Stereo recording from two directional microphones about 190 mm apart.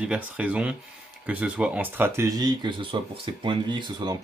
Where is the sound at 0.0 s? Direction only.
5° right (ahead or behind).